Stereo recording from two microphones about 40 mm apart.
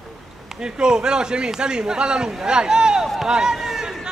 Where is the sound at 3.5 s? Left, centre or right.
Centre.